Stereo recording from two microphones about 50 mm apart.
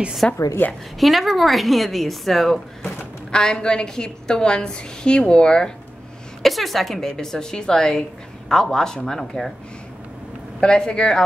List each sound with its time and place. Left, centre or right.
0.2 s a woman's voice: centre
0.6 s a woman's voice: left
0.9 s a woman's voice: centre
3.3 s a woman's voice: centre
6.4 s a woman's voice: centre
10.6 s a woman's voice: centre